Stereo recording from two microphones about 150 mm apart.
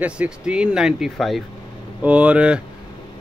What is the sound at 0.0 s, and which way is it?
Speech, 5° right (ahead or behind).